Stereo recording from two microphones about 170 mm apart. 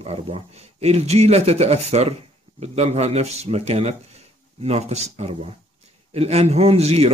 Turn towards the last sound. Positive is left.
turn(degrees=-35)  # may be behind; listen again after turning